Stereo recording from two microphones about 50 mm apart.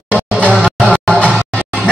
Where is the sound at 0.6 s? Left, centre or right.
Left.